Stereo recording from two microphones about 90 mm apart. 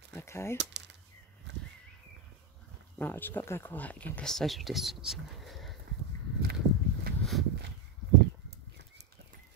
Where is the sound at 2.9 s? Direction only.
20° left (ahead or behind); by 5.7 s centre (ahead or behind).